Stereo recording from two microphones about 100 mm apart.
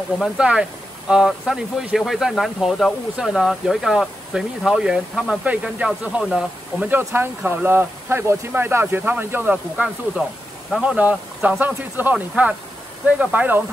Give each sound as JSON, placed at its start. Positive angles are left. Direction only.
{"t": 0.2, "sound": "speech", "side_deg": -10}
{"t": 6.9, "sound": "speech", "side_deg": -20}